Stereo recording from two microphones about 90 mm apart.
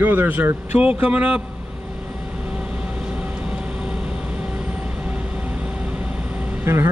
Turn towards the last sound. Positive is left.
turn(degrees=-25)  # may be behind; listen again after turning